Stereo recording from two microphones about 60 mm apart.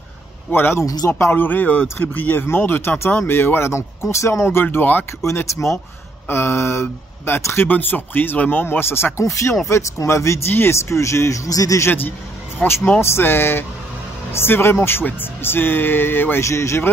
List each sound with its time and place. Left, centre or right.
0.5 s speech: left
0.8 s speech: left
1.3 s speech: left
3.7 s speech: left
4.6 s speech: left
5.2 s speech: left
9.2 s speech: left
11.4 s speech: left
12.6 s speech: centre
13.0 s speech: left
16.4 s speech: left